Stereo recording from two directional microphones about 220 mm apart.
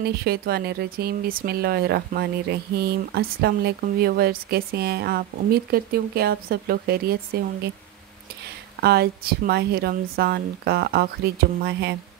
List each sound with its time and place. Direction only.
0.0 s speech: 45° right (ahead or behind)
8.8 s speech: 45° right (ahead or behind)